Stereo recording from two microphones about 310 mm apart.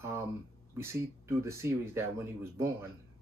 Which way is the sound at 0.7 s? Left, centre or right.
Centre.